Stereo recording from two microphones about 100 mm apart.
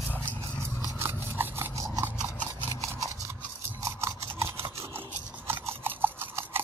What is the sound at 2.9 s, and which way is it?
Horse, 25° right (ahead or behind).